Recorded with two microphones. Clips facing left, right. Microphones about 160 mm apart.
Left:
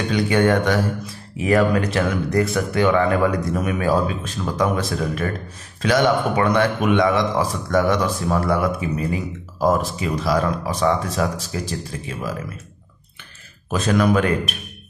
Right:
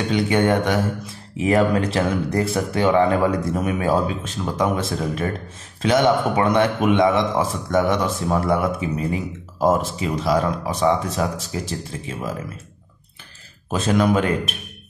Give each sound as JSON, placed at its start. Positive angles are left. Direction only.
{"t": 0.1, "sound": "speech", "side_deg": -20}
{"t": 13.7, "sound": "speech", "side_deg": -25}